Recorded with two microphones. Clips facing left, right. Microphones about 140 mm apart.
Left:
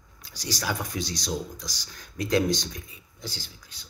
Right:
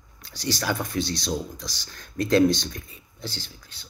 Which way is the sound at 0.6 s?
15° left (ahead or behind).